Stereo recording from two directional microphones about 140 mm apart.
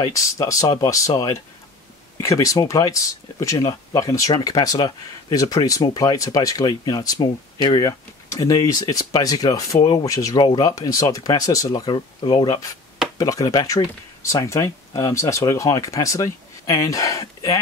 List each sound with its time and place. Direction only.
0.0 s speech: 25° left (ahead or behind)